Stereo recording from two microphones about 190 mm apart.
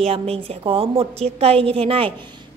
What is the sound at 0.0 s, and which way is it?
A woman's voice, 30° right (ahead or behind).